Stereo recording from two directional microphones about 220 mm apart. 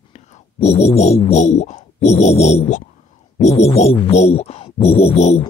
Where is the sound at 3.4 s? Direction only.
30° left (ahead or behind).